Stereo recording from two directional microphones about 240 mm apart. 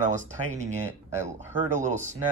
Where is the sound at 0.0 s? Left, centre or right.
Right.